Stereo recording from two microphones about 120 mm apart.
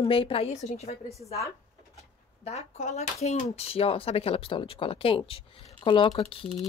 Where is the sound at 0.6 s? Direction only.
65° left (ahead or behind).